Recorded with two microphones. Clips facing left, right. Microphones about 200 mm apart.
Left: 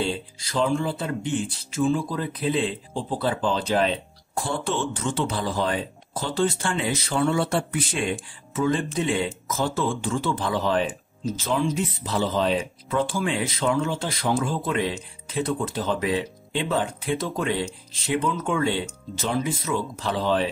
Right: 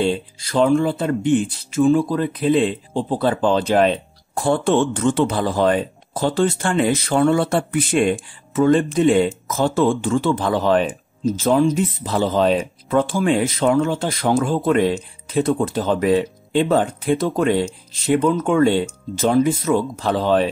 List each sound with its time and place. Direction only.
0.4 s speech: 55° right (ahead or behind)
11.2 s speech: 45° right (ahead or behind)